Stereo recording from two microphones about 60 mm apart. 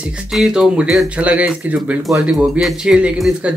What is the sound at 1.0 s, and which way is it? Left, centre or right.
Speech, right.